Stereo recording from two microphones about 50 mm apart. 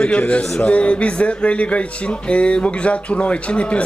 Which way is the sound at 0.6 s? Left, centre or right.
Left.